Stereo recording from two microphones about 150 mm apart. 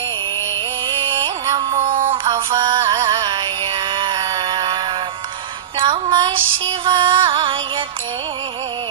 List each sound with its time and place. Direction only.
1.2 s music: 35° right (ahead or behind)
2.8 s music: 25° right (ahead or behind)
5.8 s female singing: 30° right (ahead or behind)